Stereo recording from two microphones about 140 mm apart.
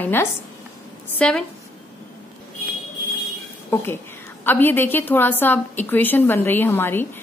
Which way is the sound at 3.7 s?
15° left (ahead or behind).